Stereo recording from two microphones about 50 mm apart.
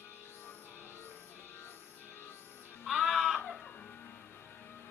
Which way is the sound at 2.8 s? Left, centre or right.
Centre.